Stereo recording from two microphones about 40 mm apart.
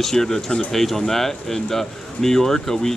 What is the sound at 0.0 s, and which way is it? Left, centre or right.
Speech, centre.